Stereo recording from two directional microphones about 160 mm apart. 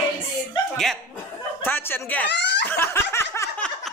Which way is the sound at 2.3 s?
90° left.